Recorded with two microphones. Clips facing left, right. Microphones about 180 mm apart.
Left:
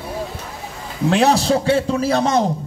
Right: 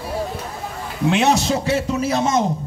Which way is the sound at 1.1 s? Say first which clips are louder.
Left 2 dB; 35° left (ahead or behind).